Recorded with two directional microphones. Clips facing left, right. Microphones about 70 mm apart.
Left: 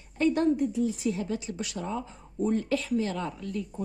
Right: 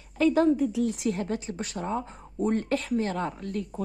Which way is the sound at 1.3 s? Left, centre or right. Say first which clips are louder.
Right 1 dB; right.